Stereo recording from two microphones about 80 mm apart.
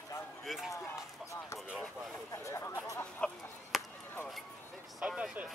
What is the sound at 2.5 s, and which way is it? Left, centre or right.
Chatter, left.